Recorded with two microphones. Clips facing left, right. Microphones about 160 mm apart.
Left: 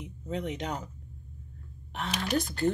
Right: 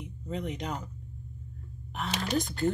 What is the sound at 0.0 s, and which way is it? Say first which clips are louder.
Speech: left 1 dB; centre (ahead or behind).